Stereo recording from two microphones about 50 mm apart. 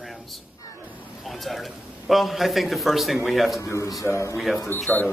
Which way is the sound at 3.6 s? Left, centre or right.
Left.